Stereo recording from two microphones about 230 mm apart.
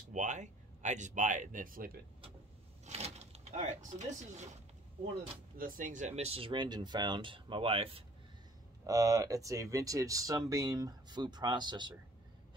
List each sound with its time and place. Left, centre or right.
0.1 s speech: right
5.6 s speech: right; by 11.9 s centre